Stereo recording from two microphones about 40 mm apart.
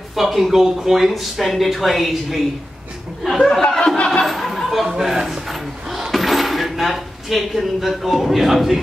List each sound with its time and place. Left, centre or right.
0.1 s speech: centre
3.2 s chuckle: centre
3.7 s speech: centre
4.3 s a sound: centre
4.8 s speech: centre
5.9 s dishes: centre